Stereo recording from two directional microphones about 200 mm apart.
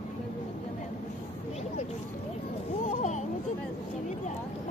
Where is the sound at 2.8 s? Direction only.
35° left (ahead or behind).